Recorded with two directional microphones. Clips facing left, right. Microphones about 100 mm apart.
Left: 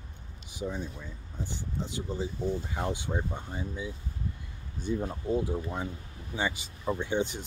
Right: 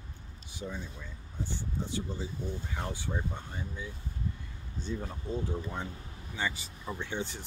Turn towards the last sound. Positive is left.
turn(degrees=15)  # may be behind; listen again after turning